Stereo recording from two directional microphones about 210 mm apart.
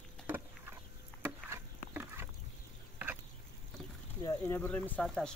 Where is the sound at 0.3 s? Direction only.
10° right (ahead or behind).